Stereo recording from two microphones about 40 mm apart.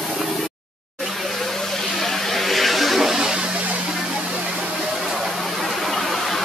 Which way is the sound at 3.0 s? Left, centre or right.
Centre.